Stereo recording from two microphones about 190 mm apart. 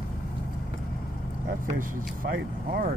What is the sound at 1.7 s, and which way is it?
Speech, 50° right (ahead or behind).